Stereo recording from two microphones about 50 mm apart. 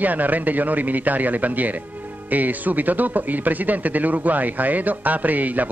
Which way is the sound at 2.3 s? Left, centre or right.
Right.